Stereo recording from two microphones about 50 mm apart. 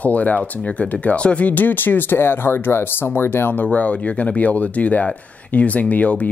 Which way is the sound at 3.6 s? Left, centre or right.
Left.